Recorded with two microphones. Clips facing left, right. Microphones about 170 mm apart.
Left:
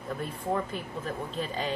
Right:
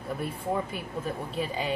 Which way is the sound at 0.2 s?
10° right (ahead or behind).